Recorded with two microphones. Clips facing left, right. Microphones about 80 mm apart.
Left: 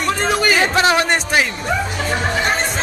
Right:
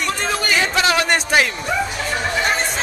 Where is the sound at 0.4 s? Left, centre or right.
Left.